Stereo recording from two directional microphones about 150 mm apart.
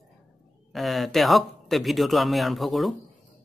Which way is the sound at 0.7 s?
Centre (ahead or behind).